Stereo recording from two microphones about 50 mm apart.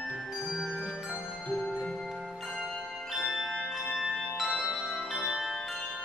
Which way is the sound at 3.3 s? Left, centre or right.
Centre.